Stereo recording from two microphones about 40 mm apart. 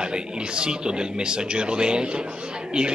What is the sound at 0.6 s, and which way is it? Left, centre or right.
A man's voice, right.